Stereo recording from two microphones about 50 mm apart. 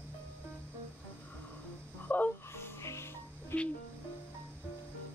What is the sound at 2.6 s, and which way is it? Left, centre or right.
Music, left.